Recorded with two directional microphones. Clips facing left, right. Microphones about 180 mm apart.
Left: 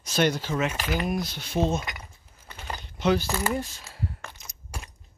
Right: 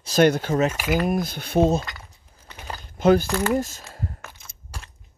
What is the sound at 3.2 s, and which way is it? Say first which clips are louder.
Speech: right 5 dB; 10° left (ahead or behind).